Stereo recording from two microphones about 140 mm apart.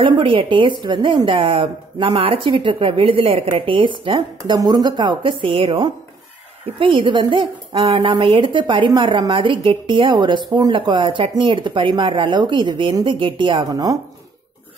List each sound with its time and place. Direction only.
0.0 s a woman's voice: 40° right (ahead or behind)